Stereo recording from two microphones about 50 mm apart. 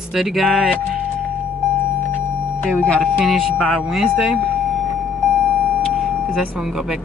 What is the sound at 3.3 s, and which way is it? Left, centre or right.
Speech, centre.